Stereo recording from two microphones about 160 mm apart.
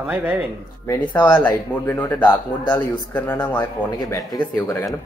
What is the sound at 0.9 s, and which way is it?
Speech, 10° left (ahead or behind).